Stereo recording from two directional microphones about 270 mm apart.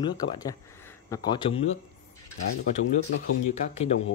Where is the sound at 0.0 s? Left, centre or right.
Centre.